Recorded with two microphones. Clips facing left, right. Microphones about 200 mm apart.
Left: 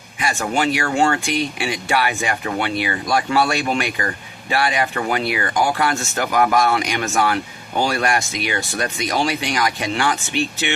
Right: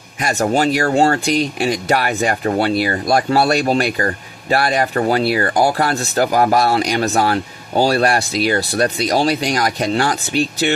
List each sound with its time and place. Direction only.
0.2 s speech: 40° right (ahead or behind)